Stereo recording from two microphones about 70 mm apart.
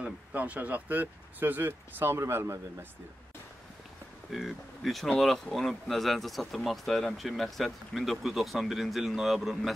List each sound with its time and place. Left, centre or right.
0.0 s speech: right
4.3 s speech: centre